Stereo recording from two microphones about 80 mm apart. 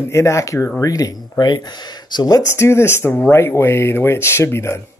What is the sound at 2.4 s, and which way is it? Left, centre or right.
Speech, left.